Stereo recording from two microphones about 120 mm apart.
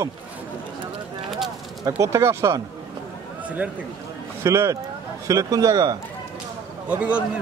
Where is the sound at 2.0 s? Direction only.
25° right (ahead or behind).